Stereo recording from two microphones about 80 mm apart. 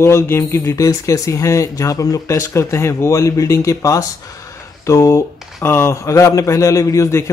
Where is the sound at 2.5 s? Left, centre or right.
Left.